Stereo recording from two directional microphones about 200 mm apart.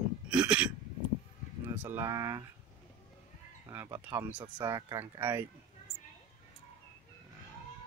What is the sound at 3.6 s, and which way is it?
Speech, 15° right (ahead or behind).